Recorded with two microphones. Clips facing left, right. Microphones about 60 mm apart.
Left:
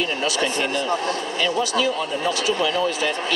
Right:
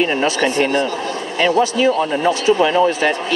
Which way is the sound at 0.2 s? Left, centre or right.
Right.